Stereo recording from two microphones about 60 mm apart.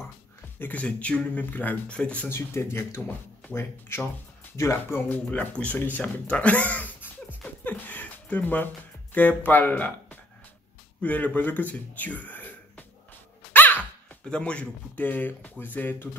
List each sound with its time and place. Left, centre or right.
0.6 s speech: left
2.2 s speech: left
5.1 s speech: left
7.6 s a sound: left
9.1 s speech: left
13.5 s dog: left
14.2 s speech: centre; by 16.1 s left